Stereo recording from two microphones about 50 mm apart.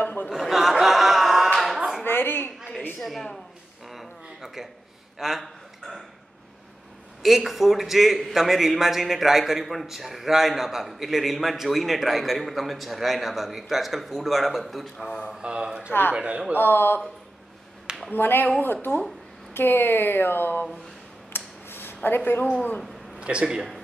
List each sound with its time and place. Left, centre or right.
0.0 s chuckle: left
0.3 s a sound: centre
2.0 s a sound: left
3.0 s a woman's voice: centre
3.9 s a sound: centre
5.2 s speech: centre
7.2 s a man's voice: centre
15.3 s speech: centre
16.5 s speech: left
18.1 s speech: left
21.3 s a sound: left
23.1 s speech: right